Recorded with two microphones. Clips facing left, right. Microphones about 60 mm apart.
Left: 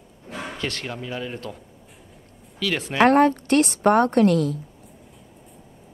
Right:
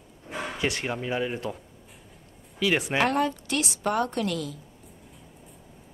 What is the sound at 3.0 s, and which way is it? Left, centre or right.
Speech, left.